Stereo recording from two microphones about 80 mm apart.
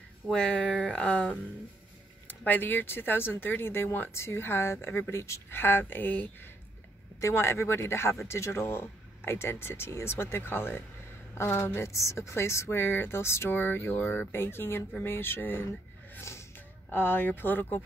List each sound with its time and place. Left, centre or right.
0.3 s speech: centre
7.2 s speech: left
16.1 s a sound: left